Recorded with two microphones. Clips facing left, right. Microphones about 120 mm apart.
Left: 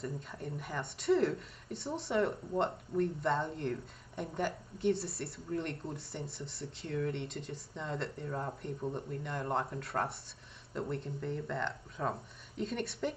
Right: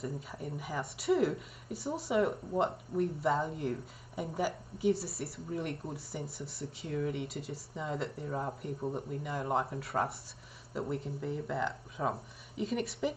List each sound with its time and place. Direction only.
0.0 s speech: 5° right (ahead or behind)